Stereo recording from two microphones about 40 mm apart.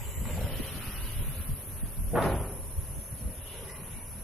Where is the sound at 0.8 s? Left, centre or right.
Centre.